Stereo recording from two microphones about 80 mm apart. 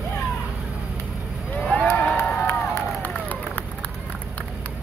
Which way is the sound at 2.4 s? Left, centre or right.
Left.